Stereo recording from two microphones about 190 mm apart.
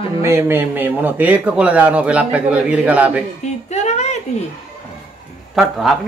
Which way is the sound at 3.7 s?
35° left (ahead or behind).